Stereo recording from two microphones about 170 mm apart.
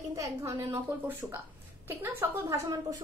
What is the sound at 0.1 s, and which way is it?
A woman's voice, 20° right (ahead or behind).